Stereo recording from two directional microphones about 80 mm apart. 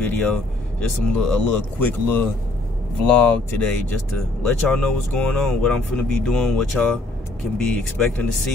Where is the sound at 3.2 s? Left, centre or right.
Centre.